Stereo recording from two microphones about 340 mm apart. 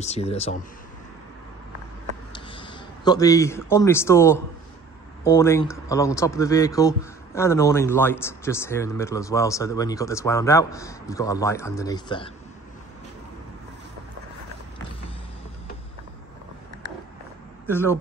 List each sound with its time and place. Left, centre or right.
0.0 s speech: centre
2.3 s a man's voice: centre
17.6 s speech: centre